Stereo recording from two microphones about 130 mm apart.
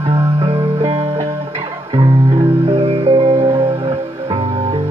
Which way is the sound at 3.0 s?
45° right (ahead or behind).